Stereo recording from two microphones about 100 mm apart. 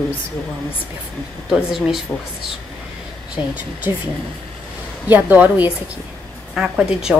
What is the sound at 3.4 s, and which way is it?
Speech, 20° right (ahead or behind).